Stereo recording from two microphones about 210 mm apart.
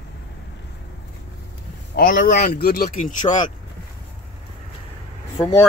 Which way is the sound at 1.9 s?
45° left (ahead or behind).